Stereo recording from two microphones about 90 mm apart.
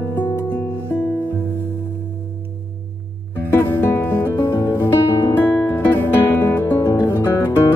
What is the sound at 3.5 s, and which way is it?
Music, 25° left (ahead or behind).